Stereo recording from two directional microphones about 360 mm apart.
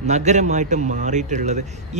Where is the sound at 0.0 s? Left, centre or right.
Centre.